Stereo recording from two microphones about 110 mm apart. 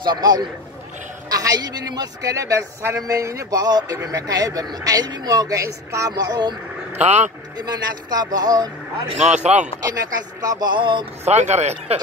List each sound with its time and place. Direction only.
0.0 s speech: 40° right (ahead or behind)
7.0 s speech: 90° right
7.5 s speech: 40° right (ahead or behind)
9.3 s speech: 90° right
9.8 s speech: 35° right (ahead or behind)
11.2 s speech: 90° right